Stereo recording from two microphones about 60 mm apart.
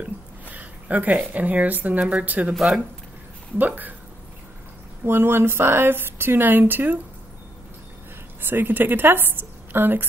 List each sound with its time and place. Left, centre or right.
0.0 s speech: right
2.5 s speech: centre
3.5 s speech: right
5.0 s speech: right
8.4 s speech: right